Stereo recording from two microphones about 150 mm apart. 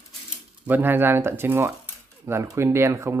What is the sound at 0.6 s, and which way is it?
Speech, 15° right (ahead or behind).